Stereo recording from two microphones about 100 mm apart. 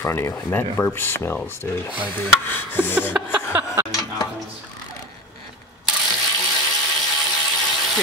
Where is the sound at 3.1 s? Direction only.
10° right (ahead or behind).